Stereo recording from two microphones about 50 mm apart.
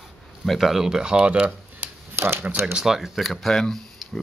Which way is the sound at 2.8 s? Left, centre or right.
Centre.